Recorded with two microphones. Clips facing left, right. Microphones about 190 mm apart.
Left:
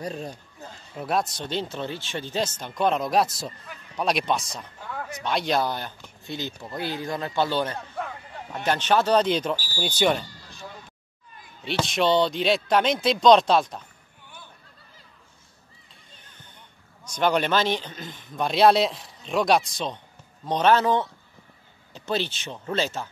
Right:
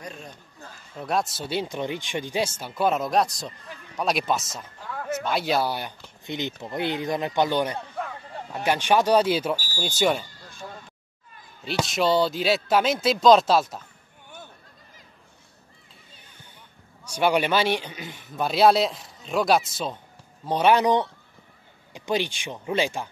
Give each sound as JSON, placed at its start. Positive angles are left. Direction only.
{"t": 0.0, "sound": "speech", "side_deg": 35}
{"t": 0.6, "sound": "a sound", "side_deg": 20}
{"t": 0.9, "sound": "a man's voice", "side_deg": 0}
{"t": 11.6, "sound": "a man's voice", "side_deg": 0}
{"t": 17.0, "sound": "a man's voice", "side_deg": -10}